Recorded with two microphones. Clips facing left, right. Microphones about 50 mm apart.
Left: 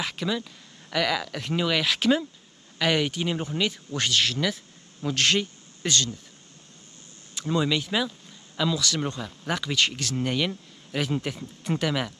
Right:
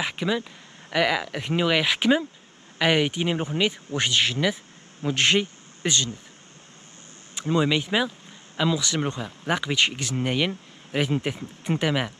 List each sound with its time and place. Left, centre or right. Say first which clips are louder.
0.0 s speech: right 3 dB; centre
7.3 s speech: right 3 dB; right